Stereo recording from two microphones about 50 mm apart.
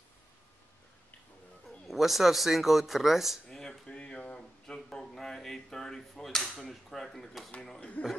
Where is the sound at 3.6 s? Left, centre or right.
Centre.